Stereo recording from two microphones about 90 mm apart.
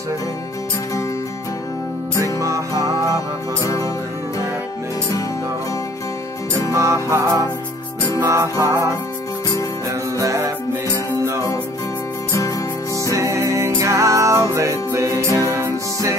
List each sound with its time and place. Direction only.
2.3 s music: 35° right (ahead or behind)
3.6 s music: 40° left (ahead or behind)
6.7 s music: 35° right (ahead or behind)
9.8 s music: 35° right (ahead or behind)
12.3 s music: 40° left (ahead or behind)
13.1 s music: 35° right (ahead or behind)